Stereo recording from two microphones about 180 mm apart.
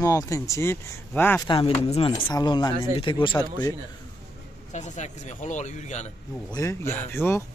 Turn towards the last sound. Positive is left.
turn(degrees=15)  # may be behind; listen again after turning